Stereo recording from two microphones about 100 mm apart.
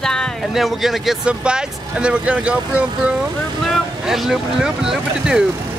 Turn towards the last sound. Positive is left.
turn(degrees=-5)  # may be behind; listen again after turning